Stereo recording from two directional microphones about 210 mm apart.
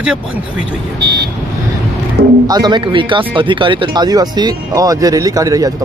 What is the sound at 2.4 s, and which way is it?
Speech, 20° right (ahead or behind).